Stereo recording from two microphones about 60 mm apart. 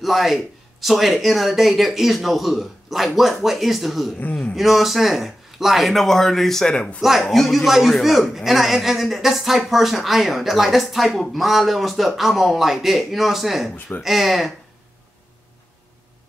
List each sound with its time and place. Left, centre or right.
0.0 s speech: centre
7.0 s speech: centre